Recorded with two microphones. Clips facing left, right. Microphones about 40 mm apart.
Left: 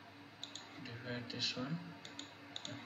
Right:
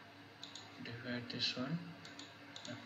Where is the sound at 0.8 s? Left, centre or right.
Centre.